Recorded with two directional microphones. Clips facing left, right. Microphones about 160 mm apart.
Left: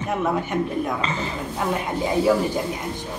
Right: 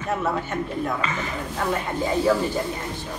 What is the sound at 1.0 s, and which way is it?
Speech, 30° left (ahead or behind).